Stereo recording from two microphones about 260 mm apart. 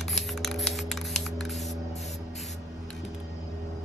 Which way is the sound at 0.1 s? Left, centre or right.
Centre.